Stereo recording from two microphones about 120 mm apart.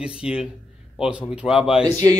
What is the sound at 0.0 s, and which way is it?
A man's voice, 5° right (ahead or behind).